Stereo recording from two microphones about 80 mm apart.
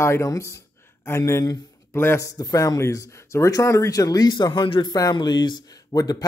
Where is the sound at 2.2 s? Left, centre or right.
Left.